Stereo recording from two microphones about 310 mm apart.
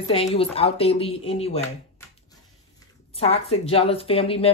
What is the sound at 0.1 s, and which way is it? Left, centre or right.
A woman's voice, centre.